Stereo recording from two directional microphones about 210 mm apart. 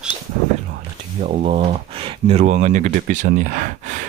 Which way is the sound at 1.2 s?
35° right (ahead or behind).